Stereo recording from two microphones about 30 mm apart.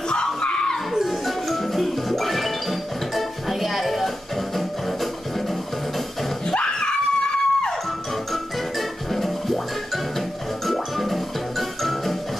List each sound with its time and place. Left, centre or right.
0.1 s a sound: left
1.2 s music: centre
6.5 s screaming: left
9.1 s music: centre
10.7 s music: centre